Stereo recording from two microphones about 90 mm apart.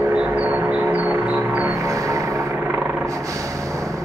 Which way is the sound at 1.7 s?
35° right (ahead or behind).